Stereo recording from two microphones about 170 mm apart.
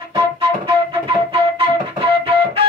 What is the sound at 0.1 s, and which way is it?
Flute, 30° right (ahead or behind).